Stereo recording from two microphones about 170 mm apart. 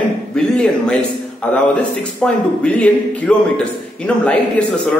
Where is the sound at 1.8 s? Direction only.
5° left (ahead or behind).